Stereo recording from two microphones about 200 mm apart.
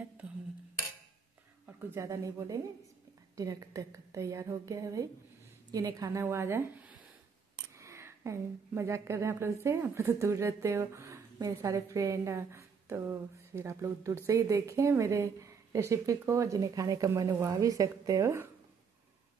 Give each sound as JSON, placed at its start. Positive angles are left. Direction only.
{"t": 1.7, "sound": "speech", "side_deg": -15}